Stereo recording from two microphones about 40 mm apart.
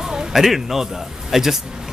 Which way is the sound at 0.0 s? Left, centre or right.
Centre.